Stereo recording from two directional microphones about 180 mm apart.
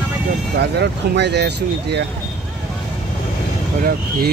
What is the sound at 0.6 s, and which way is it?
Speech, 70° right (ahead or behind).